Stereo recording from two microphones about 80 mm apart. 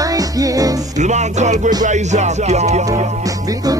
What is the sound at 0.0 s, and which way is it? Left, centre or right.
Music, right.